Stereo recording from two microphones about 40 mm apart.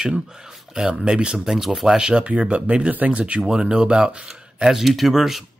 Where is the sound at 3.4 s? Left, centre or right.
Centre.